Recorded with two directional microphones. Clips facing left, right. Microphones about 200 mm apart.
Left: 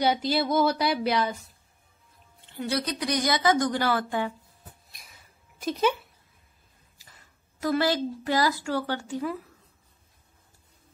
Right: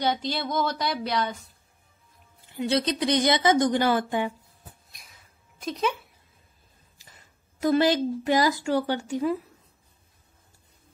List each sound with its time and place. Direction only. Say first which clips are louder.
0.0 s speech: left 3 dB; 10° left (ahead or behind)
2.5 s speech: right 4 dB; 20° right (ahead or behind)
5.6 s speech: left 3 dB; centre (ahead or behind)
7.6 s speech: right 4 dB; 20° right (ahead or behind)